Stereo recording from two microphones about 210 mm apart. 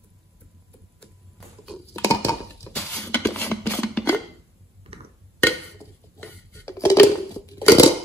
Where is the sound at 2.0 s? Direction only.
15° left (ahead or behind).